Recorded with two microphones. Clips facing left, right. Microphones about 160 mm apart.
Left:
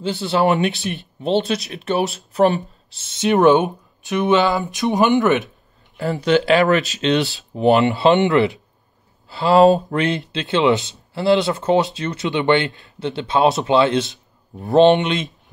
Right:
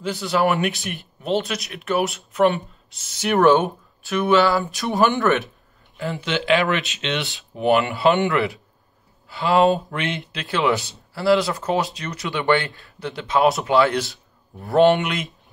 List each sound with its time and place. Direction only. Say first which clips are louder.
0.0 s speech: left 2 dB; 25° left (ahead or behind)
3.1 s speech: left 2 dB; 20° left (ahead or behind)
5.9 s speech: left 8 dB; 40° left (ahead or behind)
7.8 s speech: left 4 dB; 20° left (ahead or behind)
9.3 s speech: left 5 dB; 35° left (ahead or behind)
10.4 s speech: left 4 dB; 25° left (ahead or behind)